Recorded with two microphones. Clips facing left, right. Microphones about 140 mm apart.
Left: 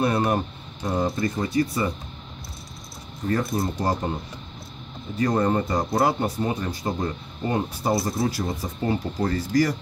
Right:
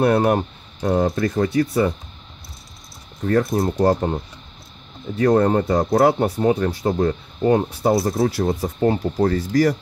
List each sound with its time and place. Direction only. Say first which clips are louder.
0.0 s speech: right 6 dB; 65° right (ahead or behind)
3.3 s speech: right 6 dB; 60° right (ahead or behind)
5.2 s speech: right 6 dB; 65° right (ahead or behind)